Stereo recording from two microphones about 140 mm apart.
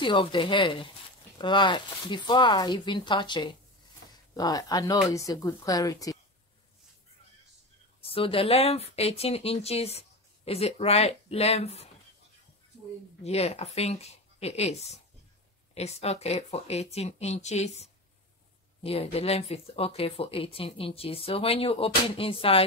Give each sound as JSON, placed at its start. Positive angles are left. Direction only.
{"t": 0.0, "sound": "speech", "side_deg": 35}
{"t": 8.0, "sound": "speech", "side_deg": 40}
{"t": 13.2, "sound": "speech", "side_deg": 50}